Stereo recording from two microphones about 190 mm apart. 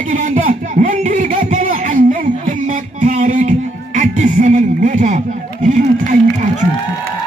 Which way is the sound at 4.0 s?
40° right (ahead or behind).